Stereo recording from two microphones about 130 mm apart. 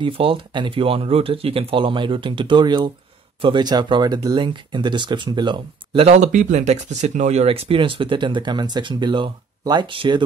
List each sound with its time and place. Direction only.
0.0 s speech: 40° right (ahead or behind)
6.0 s speech: 60° right (ahead or behind); by 10.2 s 40° right (ahead or behind)